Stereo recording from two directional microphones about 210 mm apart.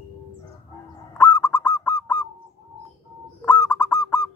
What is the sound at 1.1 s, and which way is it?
Goose, 15° left (ahead or behind).